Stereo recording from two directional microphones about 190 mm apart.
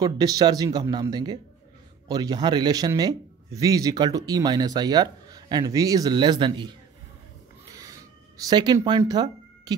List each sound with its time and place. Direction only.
0.0 s a man's voice: 20° right (ahead or behind)
7.7 s a sound: 15° right (ahead or behind)
8.5 s speech: 20° right (ahead or behind)